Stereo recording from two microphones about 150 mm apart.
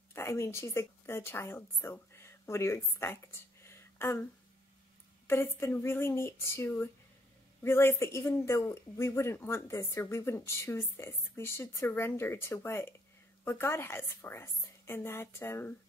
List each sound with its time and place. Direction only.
0.1 s a woman's voice: 15° left (ahead or behind)
3.6 s a sound: 15° left (ahead or behind)
5.2 s speech: 15° left (ahead or behind)